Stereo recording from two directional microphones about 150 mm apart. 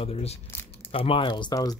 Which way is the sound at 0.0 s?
40° left (ahead or behind).